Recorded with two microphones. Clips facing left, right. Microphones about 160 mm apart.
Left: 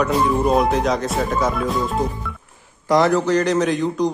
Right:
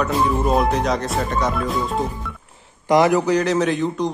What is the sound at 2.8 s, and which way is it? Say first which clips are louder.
Speech: right 1 dB; 15° right (ahead or behind).